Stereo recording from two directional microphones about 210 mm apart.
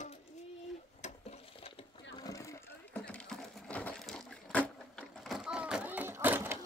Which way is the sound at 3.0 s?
5° left (ahead or behind).